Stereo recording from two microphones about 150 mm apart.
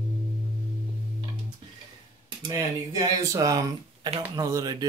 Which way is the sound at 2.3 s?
25° right (ahead or behind).